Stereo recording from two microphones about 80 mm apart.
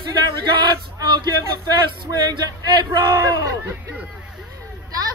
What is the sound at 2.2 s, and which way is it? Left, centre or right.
Speech, right.